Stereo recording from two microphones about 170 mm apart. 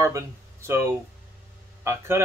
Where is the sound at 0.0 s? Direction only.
15° right (ahead or behind).